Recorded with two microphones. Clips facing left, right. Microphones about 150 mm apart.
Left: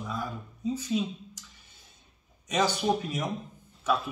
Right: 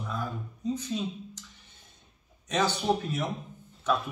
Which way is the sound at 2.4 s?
10° left (ahead or behind).